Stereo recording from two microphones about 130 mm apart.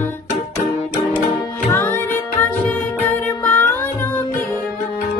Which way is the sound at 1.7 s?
15° left (ahead or behind).